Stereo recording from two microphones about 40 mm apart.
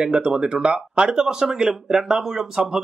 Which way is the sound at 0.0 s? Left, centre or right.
Right.